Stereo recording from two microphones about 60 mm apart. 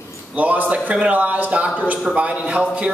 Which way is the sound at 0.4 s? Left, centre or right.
Right.